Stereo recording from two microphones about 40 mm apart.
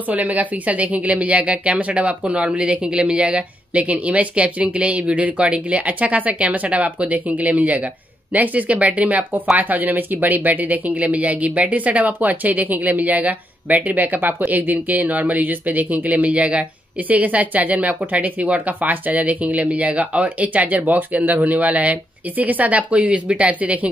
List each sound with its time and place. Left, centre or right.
0.1 s speech: right
16.3 s speech: right
17.1 s speech: right